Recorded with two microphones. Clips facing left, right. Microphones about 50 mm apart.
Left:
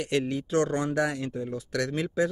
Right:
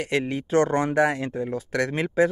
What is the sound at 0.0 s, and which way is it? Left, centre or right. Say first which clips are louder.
A man's voice: right 2 dB; right.